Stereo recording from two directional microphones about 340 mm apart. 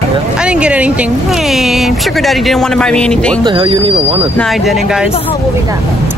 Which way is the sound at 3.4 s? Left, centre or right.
Centre.